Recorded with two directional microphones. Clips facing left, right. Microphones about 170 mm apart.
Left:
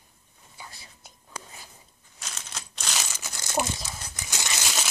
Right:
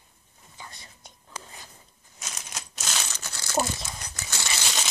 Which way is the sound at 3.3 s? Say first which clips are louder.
Right 1 dB; 20° left (ahead or behind).